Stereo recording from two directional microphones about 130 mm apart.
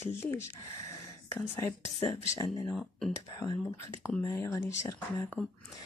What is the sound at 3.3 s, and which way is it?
Speech, 25° left (ahead or behind).